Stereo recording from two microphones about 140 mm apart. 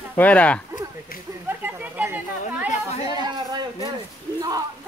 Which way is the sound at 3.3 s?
30° right (ahead or behind).